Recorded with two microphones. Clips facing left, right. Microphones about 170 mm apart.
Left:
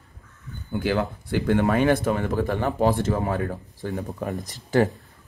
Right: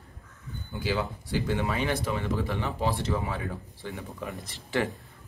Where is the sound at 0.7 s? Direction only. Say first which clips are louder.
Left 6 dB; 55° left (ahead or behind).